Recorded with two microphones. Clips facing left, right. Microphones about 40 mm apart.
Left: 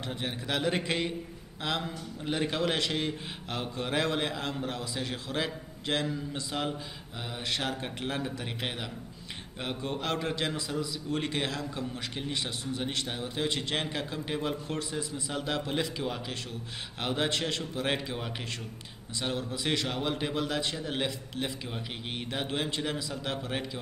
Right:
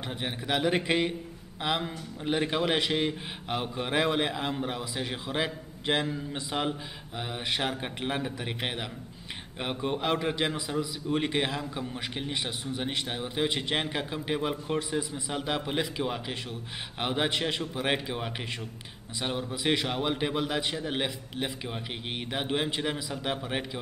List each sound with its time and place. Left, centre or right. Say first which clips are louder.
0.0 s a man's voice: right 1 dB; centre